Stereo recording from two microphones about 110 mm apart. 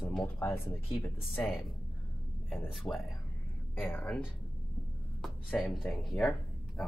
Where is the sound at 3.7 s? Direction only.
20° left (ahead or behind).